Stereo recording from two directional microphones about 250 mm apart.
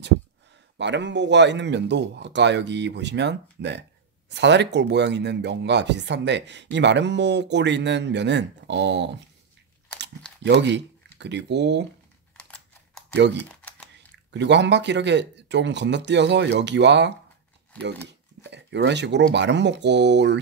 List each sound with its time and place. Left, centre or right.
0.7 s speech: right
10.4 s speech: right
12.4 s typing: centre
13.1 s speech: right